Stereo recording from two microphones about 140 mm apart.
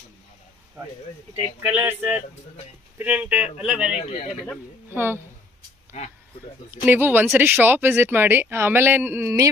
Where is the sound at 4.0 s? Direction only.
55° left (ahead or behind).